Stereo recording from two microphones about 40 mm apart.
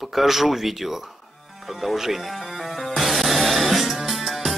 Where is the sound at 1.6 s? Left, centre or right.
Centre.